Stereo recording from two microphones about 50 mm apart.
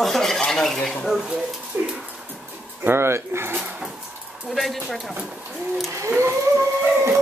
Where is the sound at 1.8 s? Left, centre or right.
Right.